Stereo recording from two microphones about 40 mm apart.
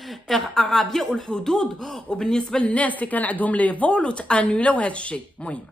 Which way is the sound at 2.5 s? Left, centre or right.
Left.